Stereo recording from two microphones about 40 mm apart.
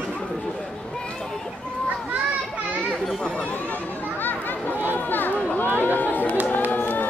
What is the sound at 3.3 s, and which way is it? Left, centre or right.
Chatter, left.